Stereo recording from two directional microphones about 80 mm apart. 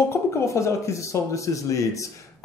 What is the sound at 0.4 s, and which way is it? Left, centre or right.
Speech, left.